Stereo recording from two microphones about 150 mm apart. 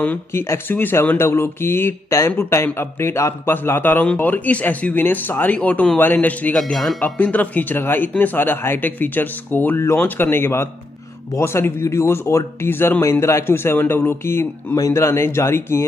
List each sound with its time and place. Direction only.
0.0 s speech: 15° left (ahead or behind)